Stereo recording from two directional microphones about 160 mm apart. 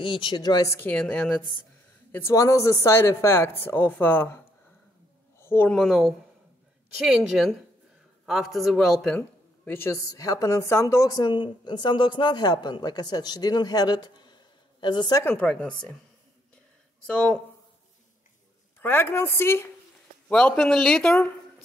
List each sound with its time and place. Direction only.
0.0 s a woman's voice: 30° left (ahead or behind)
0.8 s speech: 5° left (ahead or behind)
2.1 s speech: 20° left (ahead or behind)
5.4 s a man's voice: 15° left (ahead or behind)
9.7 s a woman's voice: 15° left (ahead or behind)
15.3 s speech: 5° left (ahead or behind)
17.0 s speech: 5° left (ahead or behind)
18.8 s speech: 10° left (ahead or behind)